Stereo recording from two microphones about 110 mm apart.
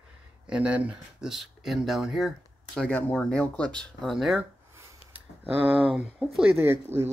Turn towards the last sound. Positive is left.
turn(degrees=-20)  # may be behind; listen again after turning